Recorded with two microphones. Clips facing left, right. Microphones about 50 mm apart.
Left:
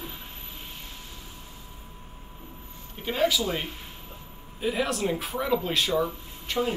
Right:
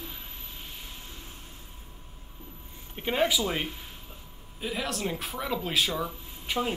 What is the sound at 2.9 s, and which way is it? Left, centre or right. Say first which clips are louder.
Speech: left 1 dB; centre.